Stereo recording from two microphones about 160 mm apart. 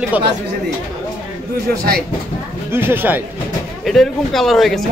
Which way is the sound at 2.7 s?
15° right (ahead or behind).